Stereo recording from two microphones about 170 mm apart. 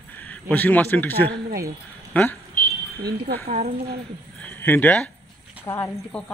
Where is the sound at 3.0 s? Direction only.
65° right (ahead or behind).